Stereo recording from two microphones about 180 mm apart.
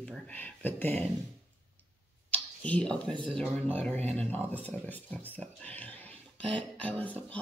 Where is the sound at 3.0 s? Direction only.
25° right (ahead or behind).